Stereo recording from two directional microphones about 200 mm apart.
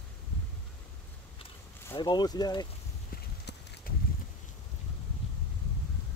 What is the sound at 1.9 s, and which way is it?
Speech, 20° left (ahead or behind).